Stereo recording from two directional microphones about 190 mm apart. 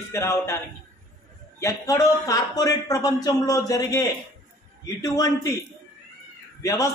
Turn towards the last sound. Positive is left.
turn(degrees=20)  # may be behind; listen again after turning